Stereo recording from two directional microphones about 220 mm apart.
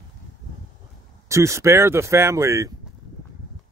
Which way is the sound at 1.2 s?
15° right (ahead or behind).